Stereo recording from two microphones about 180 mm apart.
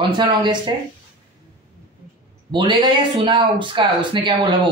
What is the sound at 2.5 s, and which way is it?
Speech, 25° right (ahead or behind).